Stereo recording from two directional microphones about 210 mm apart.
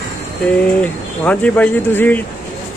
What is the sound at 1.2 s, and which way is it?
Speech, 5° left (ahead or behind).